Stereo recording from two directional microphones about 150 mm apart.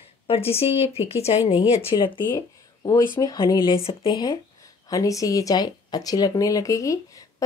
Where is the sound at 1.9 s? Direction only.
30° left (ahead or behind).